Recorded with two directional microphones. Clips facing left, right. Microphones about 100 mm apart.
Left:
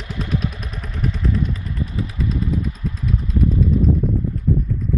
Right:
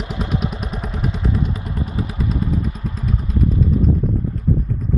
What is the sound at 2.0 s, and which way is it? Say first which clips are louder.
Vehicle: right 1 dB; 40° right (ahead or behind).